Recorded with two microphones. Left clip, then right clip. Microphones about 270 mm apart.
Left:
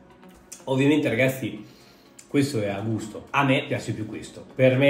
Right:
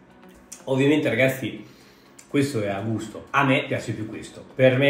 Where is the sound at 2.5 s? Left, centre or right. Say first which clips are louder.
Right 1 dB; centre.